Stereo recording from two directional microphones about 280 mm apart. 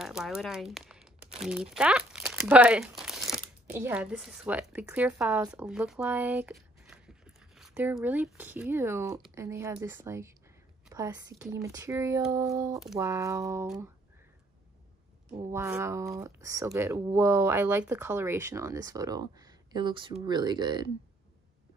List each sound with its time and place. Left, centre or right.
0.0 s crumpling: centre
1.4 s a woman's voice: centre
15.3 s speech: centre